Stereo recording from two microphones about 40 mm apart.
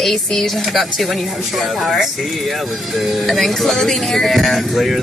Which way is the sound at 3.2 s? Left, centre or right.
Centre.